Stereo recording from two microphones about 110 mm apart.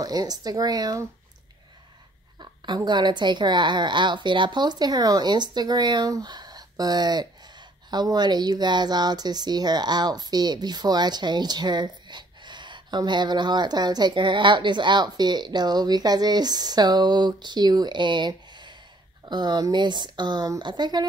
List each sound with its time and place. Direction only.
0.0 s speech: 35° right (ahead or behind)
2.3 s speech: 45° right (ahead or behind)